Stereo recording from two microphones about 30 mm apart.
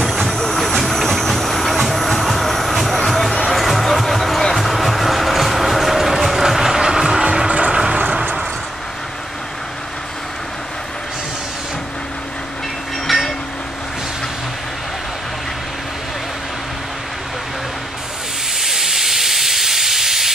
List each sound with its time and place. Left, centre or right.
0.0 s train: centre
3.0 s music: centre
6.4 s train: centre
7.4 s vehicle: right
7.7 s vehicle: right
13.0 s train: centre
18.6 s steam: centre